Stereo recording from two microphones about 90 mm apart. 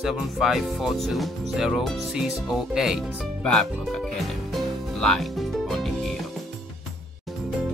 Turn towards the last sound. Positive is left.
turn(degrees=0)  # may be behind; listen again after turning